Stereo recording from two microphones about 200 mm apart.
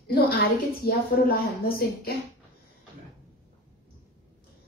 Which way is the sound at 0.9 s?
50° left (ahead or behind).